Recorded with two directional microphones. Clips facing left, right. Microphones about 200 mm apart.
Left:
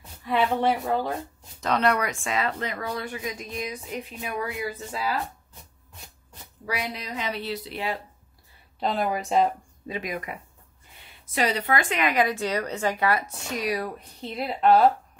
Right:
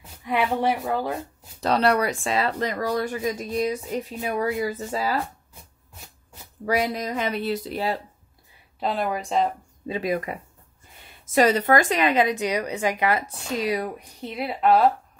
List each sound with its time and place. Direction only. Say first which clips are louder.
0.2 s a woman's voice: even; 15° right (ahead or behind)
1.6 s speech: right 3 dB; 35° right (ahead or behind)
6.6 s speech: right 8 dB; 50° right (ahead or behind)
8.7 s speech: even; centre (ahead or behind)
9.8 s speech: right 6 dB; 30° right (ahead or behind)
11.3 s a woman's voice: right 6 dB; 45° right (ahead or behind); by 13.9 s 25° right (ahead or behind)
13.9 s a woman's voice: right 1 dB; 10° right (ahead or behind)